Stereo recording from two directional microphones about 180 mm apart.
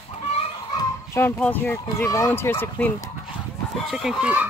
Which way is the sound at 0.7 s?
15° left (ahead or behind).